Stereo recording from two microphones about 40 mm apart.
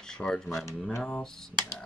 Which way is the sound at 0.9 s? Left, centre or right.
Left.